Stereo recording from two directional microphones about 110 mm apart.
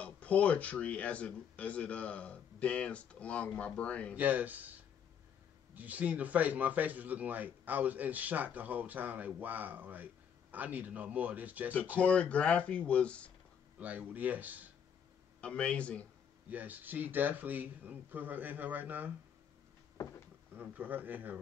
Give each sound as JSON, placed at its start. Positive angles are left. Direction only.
{"t": 0.0, "sound": "speech", "side_deg": 10}
{"t": 4.1, "sound": "speech", "side_deg": -15}
{"t": 5.8, "sound": "speech", "side_deg": -15}
{"t": 12.0, "sound": "speech", "side_deg": 10}
{"t": 13.7, "sound": "speech", "side_deg": -15}
{"t": 15.4, "sound": "speech", "side_deg": 10}
{"t": 16.4, "sound": "speech", "side_deg": -15}
{"t": 20.5, "sound": "speech", "side_deg": -15}